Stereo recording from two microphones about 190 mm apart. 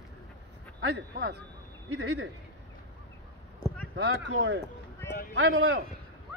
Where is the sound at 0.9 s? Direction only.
65° right (ahead or behind).